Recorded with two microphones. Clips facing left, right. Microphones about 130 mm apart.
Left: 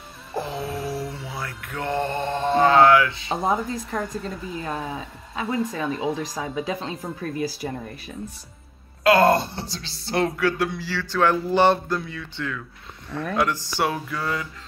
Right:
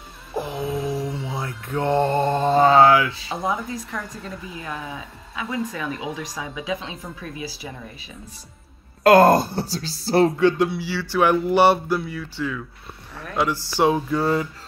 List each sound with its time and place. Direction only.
0.8 s mantra: 15° right (ahead or behind); by 3.3 s 35° right (ahead or behind)
3.4 s speech: 35° left (ahead or behind); by 8.1 s 50° left (ahead or behind)
9.0 s speech: 40° right (ahead or behind)
10.4 s a sound: 15° right (ahead or behind)
13.1 s speech: 15° right (ahead or behind); by 14.5 s 35° right (ahead or behind)